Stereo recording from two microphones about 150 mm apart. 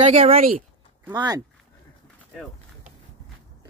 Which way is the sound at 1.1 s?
25° right (ahead or behind).